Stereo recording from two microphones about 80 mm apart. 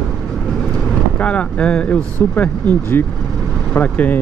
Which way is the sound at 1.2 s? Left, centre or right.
Centre.